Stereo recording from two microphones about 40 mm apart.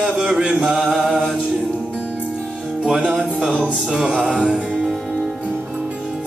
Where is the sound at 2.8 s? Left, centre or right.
Right.